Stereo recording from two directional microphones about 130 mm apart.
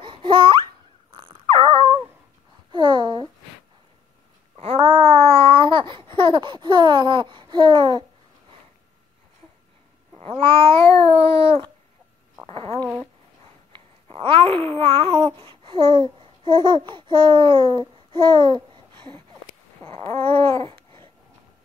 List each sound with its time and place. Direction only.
0.0 s babbling: 40° right (ahead or behind)
1.1 s dog: 40° right (ahead or behind)
2.7 s babbling: 35° right (ahead or behind)
4.7 s babbling: 30° right (ahead or behind)
5.2 s babbling: 45° right (ahead or behind)
10.9 s a sound: 40° right (ahead or behind)
12.4 s speech: 45° right (ahead or behind)
12.7 s speech: 25° right (ahead or behind)
13.7 s a sound: 45° right (ahead or behind)
14.5 s babbling: 45° right (ahead or behind)
20.1 s a sound: 45° right (ahead or behind)